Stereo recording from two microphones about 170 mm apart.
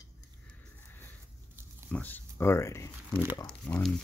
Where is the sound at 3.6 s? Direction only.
5° left (ahead or behind).